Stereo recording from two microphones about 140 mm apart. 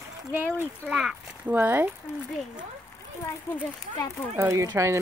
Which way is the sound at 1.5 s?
15° right (ahead or behind).